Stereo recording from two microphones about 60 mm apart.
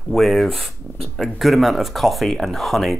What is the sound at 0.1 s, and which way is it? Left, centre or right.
Speech, centre.